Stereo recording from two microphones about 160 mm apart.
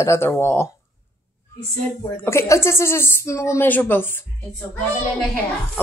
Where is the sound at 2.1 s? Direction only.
15° left (ahead or behind).